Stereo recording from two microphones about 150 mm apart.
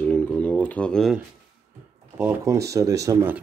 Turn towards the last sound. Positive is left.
turn(degrees=-20)  # may be behind; listen again after turning